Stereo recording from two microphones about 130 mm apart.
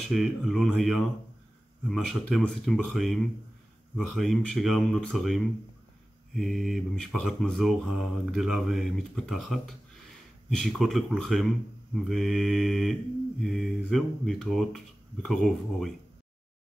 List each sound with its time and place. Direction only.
0.0 s speech: centre (ahead or behind)